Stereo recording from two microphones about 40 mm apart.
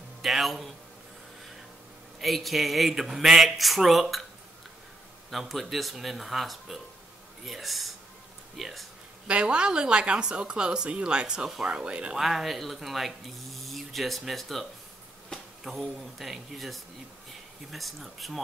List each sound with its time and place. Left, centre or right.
0.2 s a man's voice: centre
2.1 s speech: centre
5.3 s speech: centre
9.3 s speech: right
11.4 s speech: centre
11.7 s speech: right
12.2 s speech: centre